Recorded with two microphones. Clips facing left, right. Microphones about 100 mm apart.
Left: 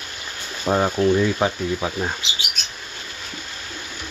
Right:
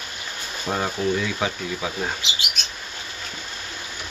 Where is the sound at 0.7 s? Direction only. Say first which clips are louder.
Left 6 dB; 30° left (ahead or behind).